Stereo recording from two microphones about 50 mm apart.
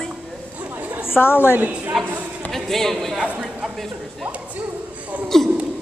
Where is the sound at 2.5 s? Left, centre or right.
Centre.